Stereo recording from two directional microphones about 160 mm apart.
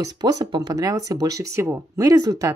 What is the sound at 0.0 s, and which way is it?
Speech, 25° right (ahead or behind).